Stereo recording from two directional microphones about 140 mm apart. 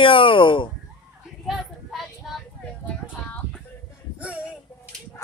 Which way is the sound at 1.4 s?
Centre (ahead or behind).